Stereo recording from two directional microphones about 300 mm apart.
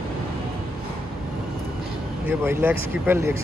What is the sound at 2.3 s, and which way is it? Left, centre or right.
Speech, centre.